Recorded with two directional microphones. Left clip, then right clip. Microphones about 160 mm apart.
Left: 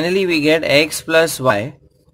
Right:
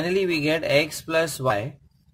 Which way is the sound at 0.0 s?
15° left (ahead or behind).